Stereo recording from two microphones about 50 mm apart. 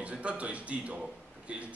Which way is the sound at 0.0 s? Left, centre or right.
Right.